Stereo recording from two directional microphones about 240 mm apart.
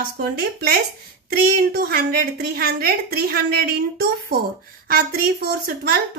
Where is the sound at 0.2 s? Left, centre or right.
Right.